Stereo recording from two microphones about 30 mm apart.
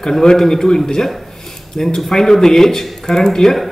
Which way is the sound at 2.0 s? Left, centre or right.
Centre.